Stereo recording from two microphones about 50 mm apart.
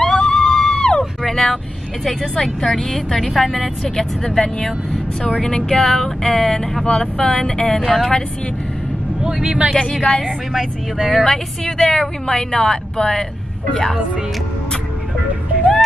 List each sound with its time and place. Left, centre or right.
0.0 s a sound: centre
1.2 s vehicle: centre
2.4 s a woman's voice: centre
9.2 s speech: right
9.8 s a woman's voice: centre
10.5 s speech: centre
11.6 s a woman's voice: centre